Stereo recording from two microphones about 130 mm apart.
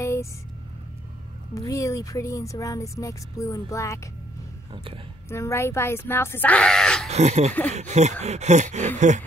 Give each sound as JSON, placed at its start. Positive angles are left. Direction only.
{"t": 0.0, "sound": "vehicle", "side_deg": 25}
{"t": 1.5, "sound": "speech", "side_deg": 25}
{"t": 5.3, "sound": "speech", "side_deg": 20}
{"t": 7.1, "sound": "speech", "side_deg": -55}